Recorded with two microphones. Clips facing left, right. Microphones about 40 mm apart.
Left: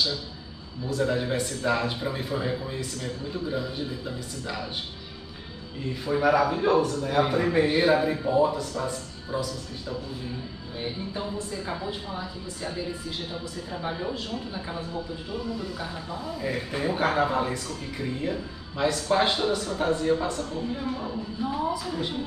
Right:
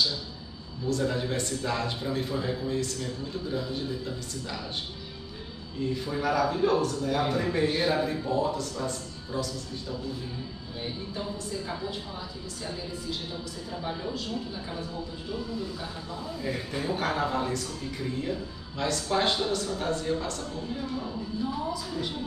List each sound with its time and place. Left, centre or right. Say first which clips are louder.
0.8 s speech: left 2 dB; centre
5.9 s a man's voice: left 6 dB; centre
16.4 s a man's voice: left 3 dB; left